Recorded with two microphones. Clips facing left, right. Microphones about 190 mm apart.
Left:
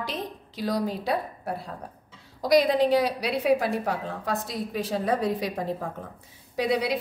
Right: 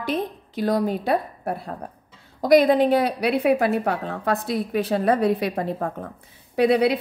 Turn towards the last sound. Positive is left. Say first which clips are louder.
# right 7 dB
turn(degrees=-60)  # may be behind; listen again after turning